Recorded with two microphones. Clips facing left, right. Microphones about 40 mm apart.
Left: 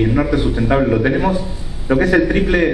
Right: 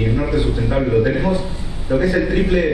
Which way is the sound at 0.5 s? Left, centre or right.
Left.